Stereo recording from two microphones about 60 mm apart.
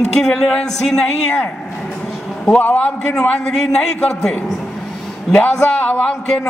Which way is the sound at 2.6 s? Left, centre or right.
Left.